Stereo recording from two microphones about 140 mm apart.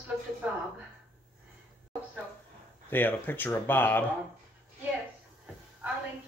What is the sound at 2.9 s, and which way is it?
Speech, 15° left (ahead or behind).